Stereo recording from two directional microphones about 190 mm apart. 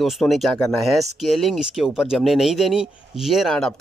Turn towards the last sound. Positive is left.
turn(degrees=0)  # may be behind; listen again after turning